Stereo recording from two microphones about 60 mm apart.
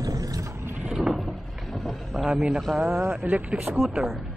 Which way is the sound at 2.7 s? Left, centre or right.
Centre.